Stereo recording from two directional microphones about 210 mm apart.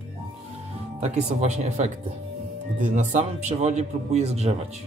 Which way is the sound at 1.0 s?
30° right (ahead or behind).